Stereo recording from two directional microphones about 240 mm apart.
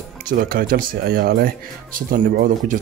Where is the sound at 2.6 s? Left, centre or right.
Right.